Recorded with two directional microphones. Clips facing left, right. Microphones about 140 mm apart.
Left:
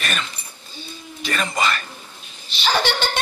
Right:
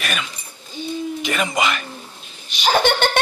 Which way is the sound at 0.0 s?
5° right (ahead or behind).